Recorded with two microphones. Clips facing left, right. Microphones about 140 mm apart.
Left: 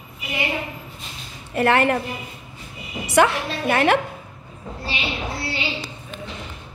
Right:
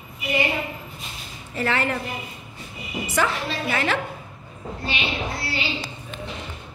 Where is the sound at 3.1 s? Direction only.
65° left (ahead or behind).